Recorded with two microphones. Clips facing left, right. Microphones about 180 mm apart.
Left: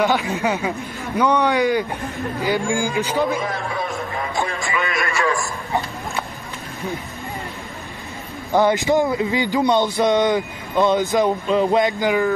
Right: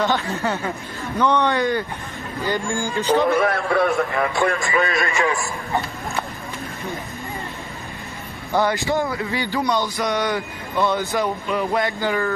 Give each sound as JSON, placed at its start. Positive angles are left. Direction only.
{"t": 0.0, "sound": "a man's voice", "side_deg": 10}
{"t": 3.3, "sound": "a man's voice", "side_deg": -65}
{"t": 4.7, "sound": "a man's voice", "side_deg": -35}
{"t": 5.0, "sound": "a man's voice", "side_deg": -15}
{"t": 8.5, "sound": "speech", "side_deg": 15}